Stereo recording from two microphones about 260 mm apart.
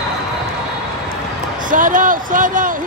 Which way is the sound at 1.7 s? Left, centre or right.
Right.